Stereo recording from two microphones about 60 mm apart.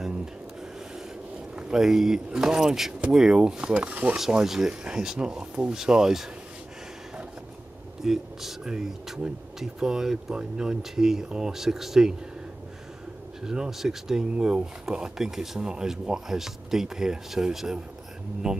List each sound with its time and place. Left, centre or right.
1.5 s speech: centre
4.3 s speech: centre
8.0 s speech: centre
13.4 s speech: centre